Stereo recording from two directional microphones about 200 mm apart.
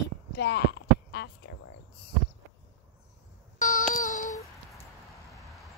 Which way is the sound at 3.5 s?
40° left (ahead or behind).